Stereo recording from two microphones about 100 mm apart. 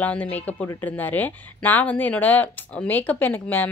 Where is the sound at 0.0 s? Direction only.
15° left (ahead or behind).